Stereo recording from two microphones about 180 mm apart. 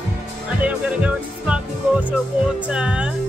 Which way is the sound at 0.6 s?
5° right (ahead or behind).